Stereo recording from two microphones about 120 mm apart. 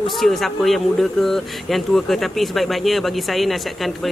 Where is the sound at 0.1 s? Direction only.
Centre (ahead or behind).